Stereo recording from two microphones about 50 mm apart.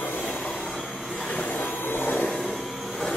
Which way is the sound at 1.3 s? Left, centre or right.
Left.